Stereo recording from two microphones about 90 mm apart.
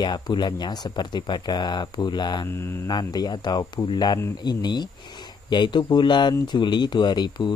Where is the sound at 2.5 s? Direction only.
30° left (ahead or behind).